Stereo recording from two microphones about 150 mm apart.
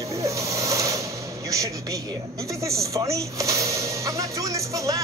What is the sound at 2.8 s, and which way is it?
Music, 20° right (ahead or behind).